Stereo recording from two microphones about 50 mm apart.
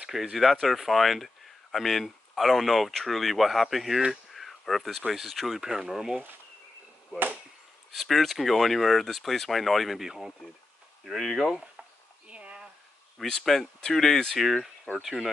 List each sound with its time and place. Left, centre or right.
0.0 s speech: centre
5.6 s speech: centre
7.9 s speech: centre
12.3 s a sound: right
13.2 s speech: centre